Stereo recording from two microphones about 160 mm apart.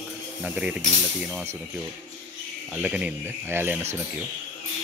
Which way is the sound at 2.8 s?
10° right (ahead or behind).